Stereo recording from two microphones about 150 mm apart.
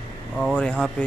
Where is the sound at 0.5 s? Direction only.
5° left (ahead or behind).